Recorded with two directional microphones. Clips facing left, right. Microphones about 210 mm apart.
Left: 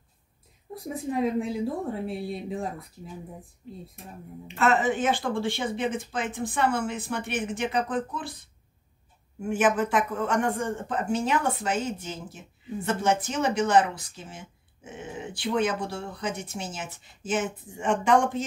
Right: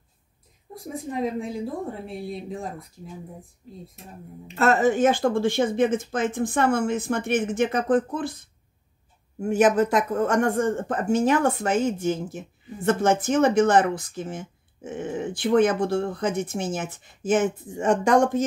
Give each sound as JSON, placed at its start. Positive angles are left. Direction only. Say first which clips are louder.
{"t": 0.9, "sound": "a woman's voice", "louder": "left 1 dB", "side_deg": 0}
{"t": 4.6, "sound": "speech", "louder": "right 4 dB", "side_deg": -40}
{"t": 9.4, "sound": "speech", "louder": "right 5 dB", "side_deg": -40}